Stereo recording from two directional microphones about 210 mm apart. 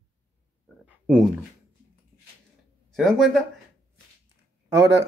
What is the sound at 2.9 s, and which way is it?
Speech, centre (ahead or behind).